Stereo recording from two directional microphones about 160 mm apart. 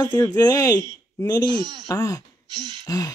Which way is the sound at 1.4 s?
30° right (ahead or behind).